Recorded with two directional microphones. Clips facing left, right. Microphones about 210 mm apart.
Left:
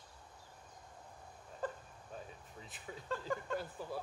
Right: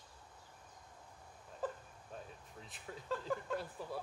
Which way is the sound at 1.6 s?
5° right (ahead or behind).